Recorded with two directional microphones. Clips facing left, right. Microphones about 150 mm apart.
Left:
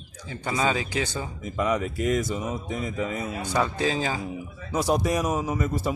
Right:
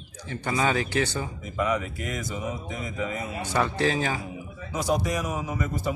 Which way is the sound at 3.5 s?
15° left (ahead or behind).